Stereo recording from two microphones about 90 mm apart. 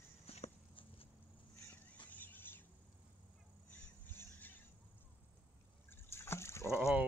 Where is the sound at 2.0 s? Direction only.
20° left (ahead or behind).